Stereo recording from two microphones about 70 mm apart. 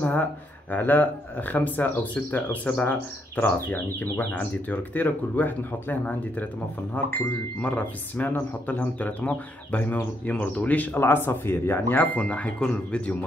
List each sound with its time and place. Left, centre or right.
0.0 s speech: left